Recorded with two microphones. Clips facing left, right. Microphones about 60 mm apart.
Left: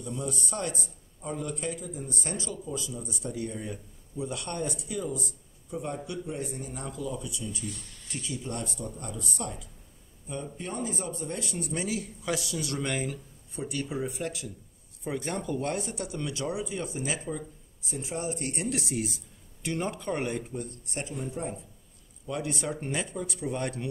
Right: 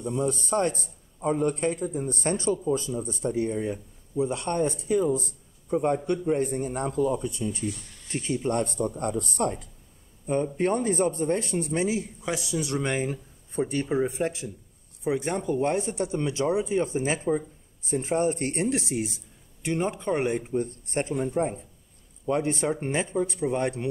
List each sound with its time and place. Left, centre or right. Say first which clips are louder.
0.0 s a man's voice: right 7 dB; right